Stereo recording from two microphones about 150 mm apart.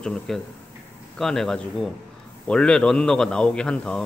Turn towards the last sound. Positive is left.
turn(degrees=5)  # may be behind; listen again after turning